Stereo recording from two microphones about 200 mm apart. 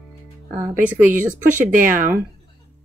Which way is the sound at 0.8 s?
10° right (ahead or behind).